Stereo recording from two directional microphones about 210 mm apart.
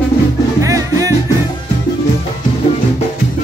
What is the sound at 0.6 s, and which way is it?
Music, 15° right (ahead or behind).